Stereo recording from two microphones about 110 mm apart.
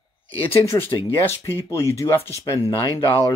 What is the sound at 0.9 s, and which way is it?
Speech, 35° left (ahead or behind).